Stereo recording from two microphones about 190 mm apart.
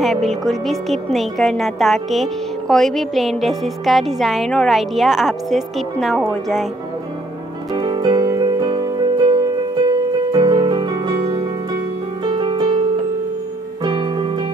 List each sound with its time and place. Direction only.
0.0 s a woman's voice: centre (ahead or behind)
7.7 s music: 25° right (ahead or behind)